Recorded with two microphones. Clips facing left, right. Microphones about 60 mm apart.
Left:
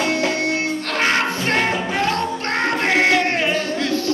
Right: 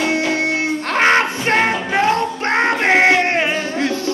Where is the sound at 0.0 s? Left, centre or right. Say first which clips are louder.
Right 2 dB; centre.